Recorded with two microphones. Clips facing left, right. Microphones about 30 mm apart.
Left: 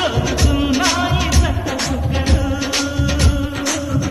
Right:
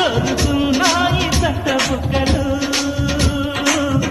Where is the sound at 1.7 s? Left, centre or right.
Right.